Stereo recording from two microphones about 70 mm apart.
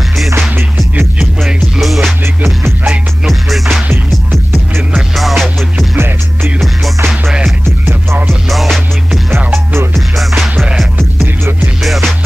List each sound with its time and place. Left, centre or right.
1.4 s music: centre
2.4 s music: right
3.3 s music: centre
5.1 s music: centre
5.9 s music: right
7.6 s music: right
8.5 s music: centre
9.5 s music: right
11.8 s music: centre